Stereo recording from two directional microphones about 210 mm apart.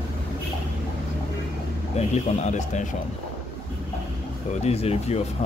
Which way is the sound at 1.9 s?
30° left (ahead or behind).